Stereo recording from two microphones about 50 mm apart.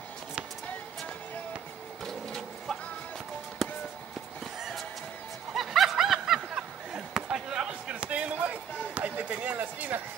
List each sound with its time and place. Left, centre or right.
2.0 s printer: centre
3.6 s music: centre
4.6 s a sound: centre
5.5 s snicker: centre
7.3 s basketball bounce: centre
7.9 s a sound: right